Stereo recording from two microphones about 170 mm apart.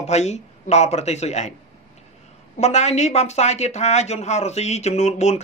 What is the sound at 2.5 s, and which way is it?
Speech, 40° left (ahead or behind).